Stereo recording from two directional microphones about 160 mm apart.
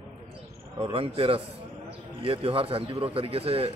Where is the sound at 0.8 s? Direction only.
35° right (ahead or behind).